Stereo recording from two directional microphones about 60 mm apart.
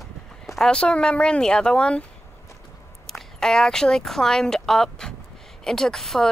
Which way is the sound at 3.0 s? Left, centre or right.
Centre.